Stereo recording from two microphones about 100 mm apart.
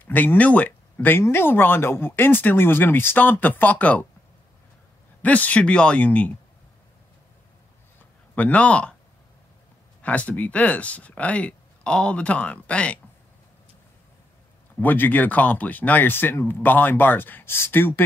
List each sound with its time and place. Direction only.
0.0 s speech: 20° left (ahead or behind)
5.2 s speech: 15° left (ahead or behind)
8.4 s speech: 15° left (ahead or behind)
10.0 s speech: 15° left (ahead or behind)
14.8 s speech: 20° left (ahead or behind)